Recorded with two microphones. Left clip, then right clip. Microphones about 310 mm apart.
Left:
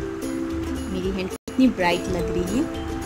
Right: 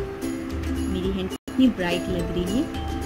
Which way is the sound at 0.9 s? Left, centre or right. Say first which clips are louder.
Left 1 dB; left.